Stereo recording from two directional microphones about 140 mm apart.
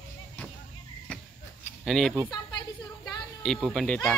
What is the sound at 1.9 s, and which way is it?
Speech, 5° left (ahead or behind).